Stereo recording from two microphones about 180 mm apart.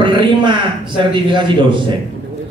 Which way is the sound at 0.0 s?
25° right (ahead or behind).